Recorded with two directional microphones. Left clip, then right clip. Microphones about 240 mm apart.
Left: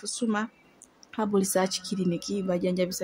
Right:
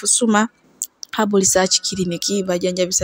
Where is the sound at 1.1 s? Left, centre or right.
Right.